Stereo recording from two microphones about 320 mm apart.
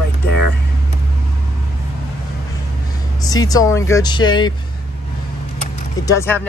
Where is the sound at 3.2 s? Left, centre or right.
Centre.